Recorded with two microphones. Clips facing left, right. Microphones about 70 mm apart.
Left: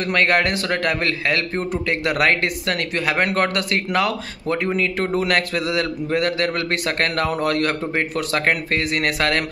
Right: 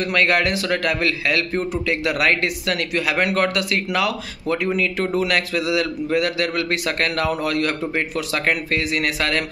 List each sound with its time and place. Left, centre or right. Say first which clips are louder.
0.0 s a man's voice: even; left